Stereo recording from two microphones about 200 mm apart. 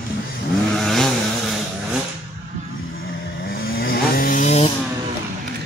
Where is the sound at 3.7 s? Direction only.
50° left (ahead or behind).